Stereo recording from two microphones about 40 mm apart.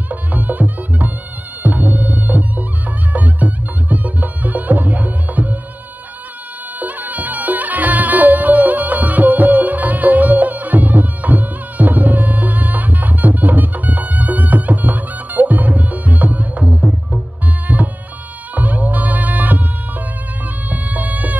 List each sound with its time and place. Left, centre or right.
0.1 s music: right
6.8 s music: right
20.7 s music: right